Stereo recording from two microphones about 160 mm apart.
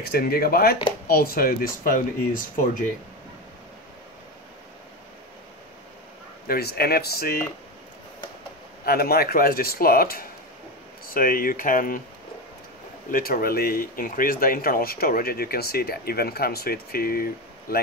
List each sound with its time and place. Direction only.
0.1 s speech: 70° left (ahead or behind); by 2.8 s 55° left (ahead or behind)
6.4 s speech: 75° left (ahead or behind)
8.8 s speech: 70° left (ahead or behind)
13.1 s speech: 65° left (ahead or behind)